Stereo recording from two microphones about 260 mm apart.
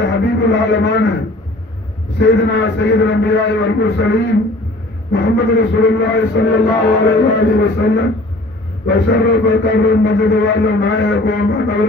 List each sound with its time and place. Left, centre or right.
0.0 s a man's voice: left
2.1 s a man's voice: left
5.1 s a man's voice: left